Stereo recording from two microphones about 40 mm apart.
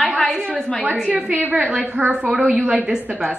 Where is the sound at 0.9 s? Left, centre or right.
Right.